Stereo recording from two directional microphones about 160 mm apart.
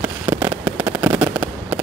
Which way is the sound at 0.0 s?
15° right (ahead or behind).